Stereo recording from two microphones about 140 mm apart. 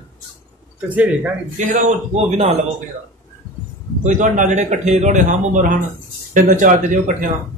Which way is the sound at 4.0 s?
65° right (ahead or behind).